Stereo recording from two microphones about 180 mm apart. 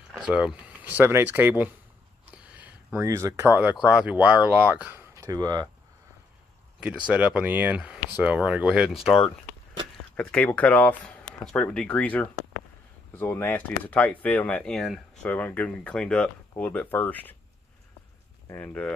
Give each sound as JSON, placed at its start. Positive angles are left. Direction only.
{"t": 0.1, "sound": "speech", "side_deg": -5}
{"t": 2.3, "sound": "a sound", "side_deg": -10}
{"t": 3.8, "sound": "speech", "side_deg": -5}
{"t": 6.8, "sound": "speech", "side_deg": -5}
{"t": 10.1, "sound": "speech", "side_deg": 5}
{"t": 18.5, "sound": "speech", "side_deg": 10}